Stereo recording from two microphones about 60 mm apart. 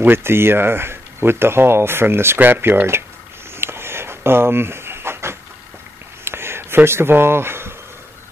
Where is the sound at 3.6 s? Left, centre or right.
Right.